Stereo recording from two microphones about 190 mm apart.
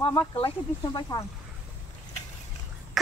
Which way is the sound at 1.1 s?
20° left (ahead or behind).